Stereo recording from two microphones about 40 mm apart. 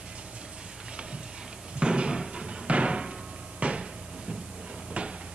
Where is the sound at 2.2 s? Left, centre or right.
Centre.